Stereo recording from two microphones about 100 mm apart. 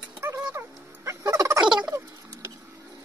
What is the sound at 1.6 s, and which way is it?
Turkey, 45° right (ahead or behind).